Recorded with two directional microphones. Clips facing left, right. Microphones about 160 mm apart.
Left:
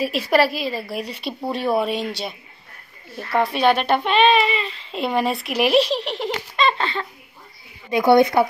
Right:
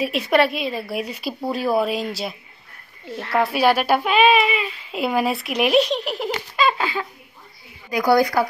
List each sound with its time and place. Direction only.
0.0 s speech: centre (ahead or behind)
3.3 s speech: 5° right (ahead or behind)
7.9 s speech: 25° left (ahead or behind)